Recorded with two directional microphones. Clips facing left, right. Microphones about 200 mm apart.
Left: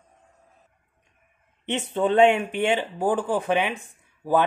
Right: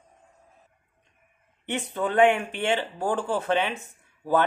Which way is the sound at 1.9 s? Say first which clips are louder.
Left 3 dB; 25° left (ahead or behind).